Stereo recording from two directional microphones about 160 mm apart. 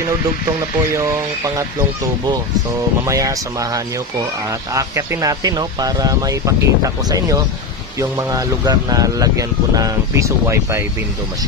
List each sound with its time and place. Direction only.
3.1 s speech: 20° right (ahead or behind)